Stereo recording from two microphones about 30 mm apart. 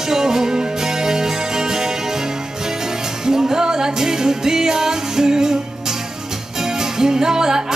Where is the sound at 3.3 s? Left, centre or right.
Right.